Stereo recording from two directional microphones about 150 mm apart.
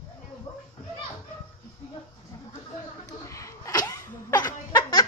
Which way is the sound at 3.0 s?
20° left (ahead or behind).